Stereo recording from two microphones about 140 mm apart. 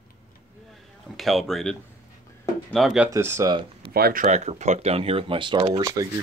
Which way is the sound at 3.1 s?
20° right (ahead or behind).